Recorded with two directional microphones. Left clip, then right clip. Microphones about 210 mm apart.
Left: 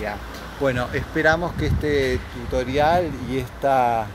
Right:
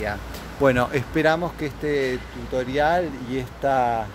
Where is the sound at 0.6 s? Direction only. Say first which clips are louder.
Right 3 dB; 50° right (ahead or behind).